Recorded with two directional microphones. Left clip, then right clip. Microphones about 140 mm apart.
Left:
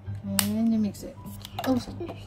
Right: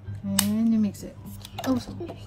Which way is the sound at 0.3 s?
15° left (ahead or behind).